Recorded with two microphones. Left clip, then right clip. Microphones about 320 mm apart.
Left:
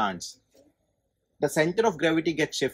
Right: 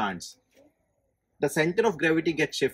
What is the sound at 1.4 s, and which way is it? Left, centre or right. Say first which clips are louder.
Speech: left 1 dB; centre.